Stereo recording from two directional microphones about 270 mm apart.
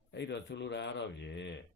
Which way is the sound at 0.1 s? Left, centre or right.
Left.